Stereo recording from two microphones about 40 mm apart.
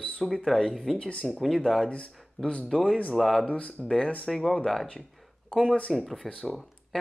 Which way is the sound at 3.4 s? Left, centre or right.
Left.